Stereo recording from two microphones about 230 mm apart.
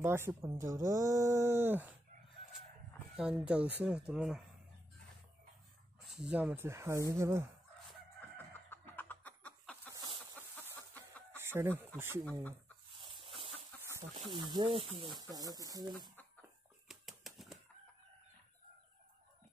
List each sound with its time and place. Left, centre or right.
0.0 s speech: centre
3.2 s speech: centre
6.0 s speech: centre
8.6 s music: centre
11.3 s chicken: centre
12.0 s speech: centre
12.3 s speech: centre
12.9 s a sound: right
13.8 s chicken: centre
14.2 s speech: centre
16.8 s typewriter: centre